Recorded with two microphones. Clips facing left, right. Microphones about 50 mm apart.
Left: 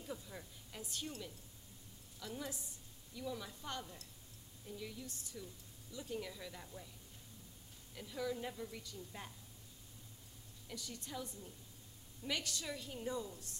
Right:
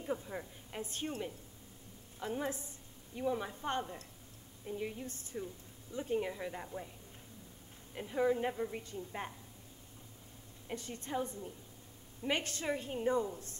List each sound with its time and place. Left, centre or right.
0.0 s speech: right
7.9 s speech: right
10.7 s speech: right